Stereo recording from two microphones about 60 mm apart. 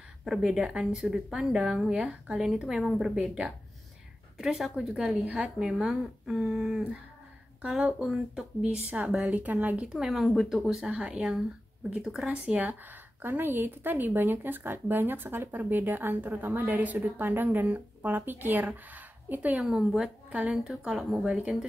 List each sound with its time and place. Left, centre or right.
0.2 s a woman's voice: centre
3.2 s a woman's voice: centre
4.4 s a woman's voice: centre
8.6 s a woman's voice: centre
9.9 s a woman's voice: centre; by 18.7 s right
18.7 s a sound: right
19.6 s speech: centre
20.2 s a woman's voice: right
20.5 s a woman's voice: centre